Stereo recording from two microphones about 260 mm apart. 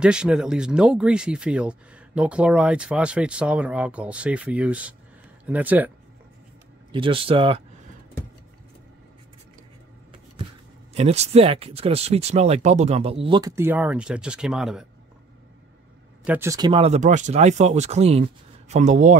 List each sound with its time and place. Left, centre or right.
0.0 s speech: centre
6.9 s speech: centre
10.9 s speech: right; by 14.9 s centre
16.3 s speech: centre; by 19.1 s right